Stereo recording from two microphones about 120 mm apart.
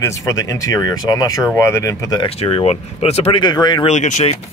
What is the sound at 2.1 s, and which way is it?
Speech, 50° left (ahead or behind).